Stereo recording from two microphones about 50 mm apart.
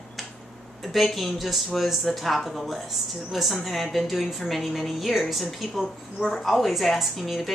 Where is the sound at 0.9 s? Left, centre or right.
Centre.